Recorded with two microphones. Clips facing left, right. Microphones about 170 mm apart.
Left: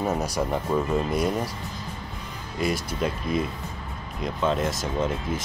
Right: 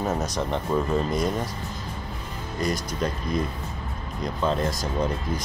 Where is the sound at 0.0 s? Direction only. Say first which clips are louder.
Left 1 dB; 10° left (ahead or behind).